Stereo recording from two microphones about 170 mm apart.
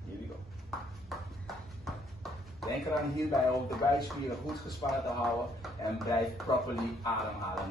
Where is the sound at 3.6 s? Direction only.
Centre (ahead or behind).